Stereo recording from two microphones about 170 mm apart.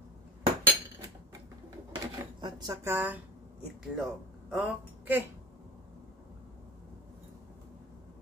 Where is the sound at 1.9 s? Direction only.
25° right (ahead or behind).